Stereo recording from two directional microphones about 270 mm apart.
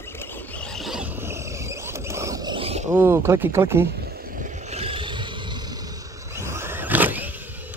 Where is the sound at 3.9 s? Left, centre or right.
Right.